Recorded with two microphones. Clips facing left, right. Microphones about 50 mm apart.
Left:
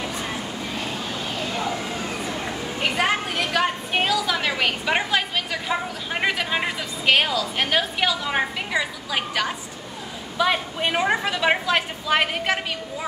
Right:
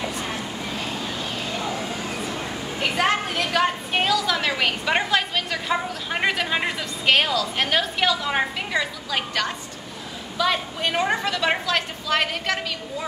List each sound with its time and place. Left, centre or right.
2.8 s a woman's voice: centre